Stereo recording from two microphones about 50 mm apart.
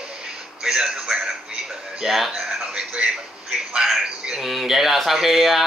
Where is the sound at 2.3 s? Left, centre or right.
Centre.